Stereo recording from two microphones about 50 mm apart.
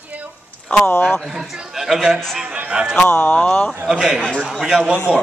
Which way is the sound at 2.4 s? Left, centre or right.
Right.